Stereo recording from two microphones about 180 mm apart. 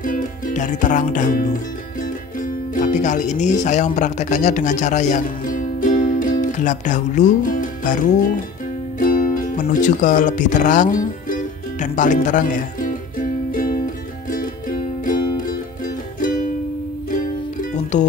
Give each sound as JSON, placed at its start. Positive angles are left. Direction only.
{"t": 0.0, "sound": "music", "side_deg": 45}
{"t": 2.7, "sound": "speech", "side_deg": 45}
{"t": 11.8, "sound": "music", "side_deg": 45}
{"t": 17.1, "sound": "music", "side_deg": 50}